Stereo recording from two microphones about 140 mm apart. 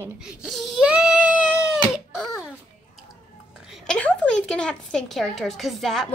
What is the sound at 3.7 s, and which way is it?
A woman's voice, 5° left (ahead or behind).